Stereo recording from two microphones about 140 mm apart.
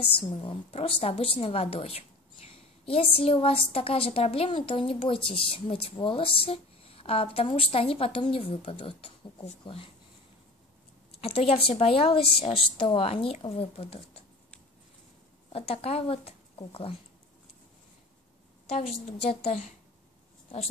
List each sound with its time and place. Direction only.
0.0 s a woman's voice: 40° left (ahead or behind)
11.1 s a woman's voice: 45° left (ahead or behind)
15.5 s speech: 45° left (ahead or behind)
19.2 s a woman's voice: 45° left (ahead or behind)